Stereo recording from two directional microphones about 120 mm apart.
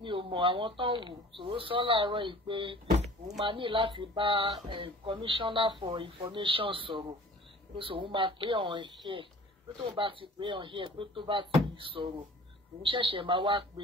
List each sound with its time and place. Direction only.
0.0 s speech: 45° right (ahead or behind)